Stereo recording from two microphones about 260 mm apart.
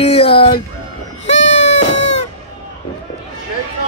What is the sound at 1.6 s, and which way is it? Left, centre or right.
Cat, left.